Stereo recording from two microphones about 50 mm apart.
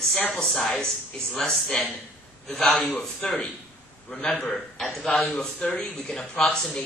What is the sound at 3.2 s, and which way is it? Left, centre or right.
A man's voice, centre.